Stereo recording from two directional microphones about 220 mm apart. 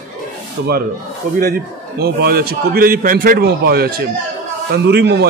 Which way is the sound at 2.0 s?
45° right (ahead or behind).